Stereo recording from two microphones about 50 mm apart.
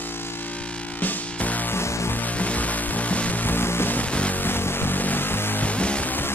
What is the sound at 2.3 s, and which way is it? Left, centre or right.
Music, left.